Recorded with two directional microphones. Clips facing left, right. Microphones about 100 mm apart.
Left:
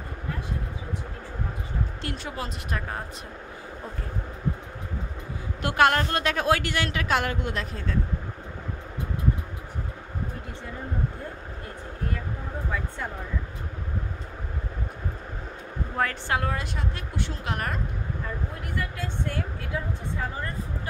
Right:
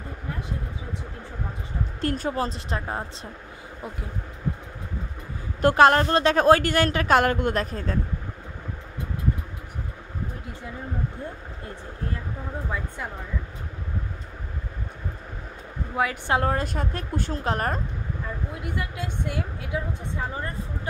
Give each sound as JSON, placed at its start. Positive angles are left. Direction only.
{"t": 2.0, "sound": "a woman's voice", "side_deg": -40}
{"t": 5.6, "sound": "a woman's voice", "side_deg": -35}
{"t": 16.3, "sound": "a woman's voice", "side_deg": -35}
{"t": 18.8, "sound": "a woman's voice", "side_deg": -15}